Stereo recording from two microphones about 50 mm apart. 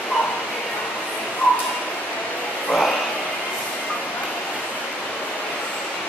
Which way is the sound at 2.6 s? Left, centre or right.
Centre.